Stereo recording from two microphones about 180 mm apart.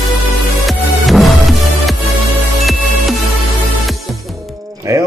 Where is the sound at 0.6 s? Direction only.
Centre (ahead or behind).